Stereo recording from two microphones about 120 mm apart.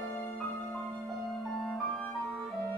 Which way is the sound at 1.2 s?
Centre (ahead or behind).